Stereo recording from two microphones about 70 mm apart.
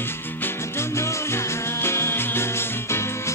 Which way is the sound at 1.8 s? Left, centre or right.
Left.